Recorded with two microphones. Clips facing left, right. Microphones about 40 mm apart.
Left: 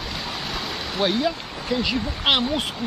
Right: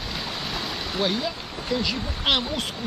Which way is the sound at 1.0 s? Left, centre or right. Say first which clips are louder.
Left 4 dB; centre.